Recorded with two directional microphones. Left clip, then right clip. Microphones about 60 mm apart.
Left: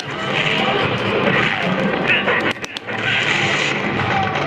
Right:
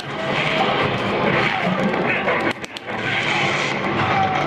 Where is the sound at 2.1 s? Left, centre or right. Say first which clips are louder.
Left 3 dB; left.